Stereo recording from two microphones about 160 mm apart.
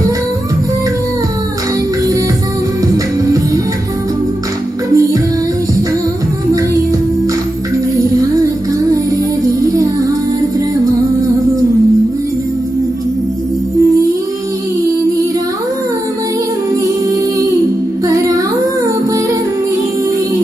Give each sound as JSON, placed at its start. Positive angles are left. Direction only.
{"t": 4.9, "sound": "music", "side_deg": -20}
{"t": 7.9, "sound": "music", "side_deg": -20}
{"t": 9.5, "sound": "music", "side_deg": -20}
{"t": 18.0, "sound": "music", "side_deg": -20}